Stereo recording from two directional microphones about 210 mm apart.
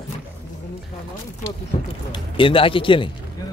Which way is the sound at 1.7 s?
30° left (ahead or behind).